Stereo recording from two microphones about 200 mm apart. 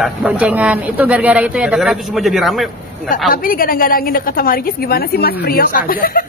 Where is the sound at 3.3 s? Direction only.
45° left (ahead or behind).